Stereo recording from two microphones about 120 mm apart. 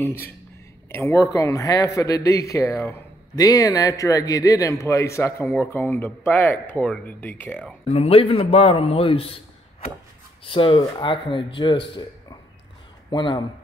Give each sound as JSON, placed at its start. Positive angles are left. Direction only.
{"t": 0.9, "sound": "speech", "side_deg": 25}
{"t": 7.9, "sound": "a man's voice", "side_deg": 55}
{"t": 13.1, "sound": "speech", "side_deg": 40}